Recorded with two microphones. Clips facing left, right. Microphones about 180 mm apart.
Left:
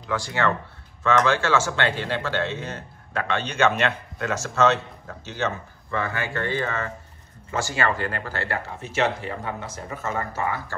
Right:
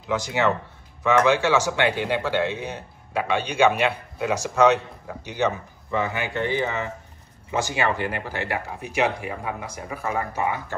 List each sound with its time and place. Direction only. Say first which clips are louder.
0.0 s speech: right 2 dB; 20° right (ahead or behind)